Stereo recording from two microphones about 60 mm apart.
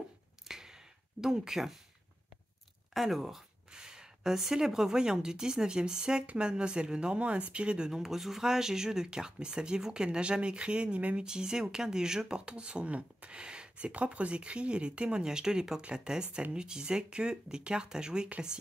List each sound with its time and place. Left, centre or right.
0.5 s a sound: centre
1.2 s speech: centre
2.9 s speech: centre; by 11.2 s right
11.2 s speech: centre